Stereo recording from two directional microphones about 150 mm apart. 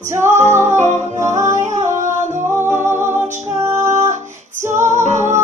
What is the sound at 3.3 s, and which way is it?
Music, 50° right (ahead or behind).